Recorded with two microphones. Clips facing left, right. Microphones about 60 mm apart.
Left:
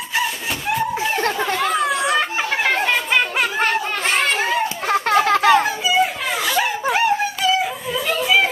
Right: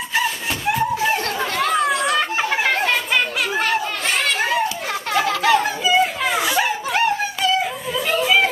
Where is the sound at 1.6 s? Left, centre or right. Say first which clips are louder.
Right 3 dB; centre.